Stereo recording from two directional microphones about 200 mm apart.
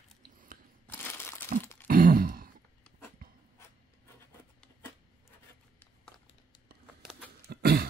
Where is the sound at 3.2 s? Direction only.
45° right (ahead or behind).